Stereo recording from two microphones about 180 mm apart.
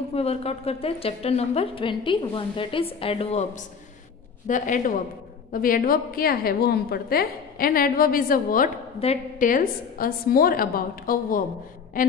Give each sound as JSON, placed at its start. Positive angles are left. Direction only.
{"t": 0.1, "sound": "a woman's voice", "side_deg": 35}
{"t": 9.0, "sound": "a woman's voice", "side_deg": 35}
{"t": 9.5, "sound": "a woman's voice", "side_deg": 50}